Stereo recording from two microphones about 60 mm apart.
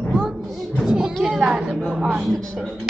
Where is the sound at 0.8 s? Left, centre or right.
Centre.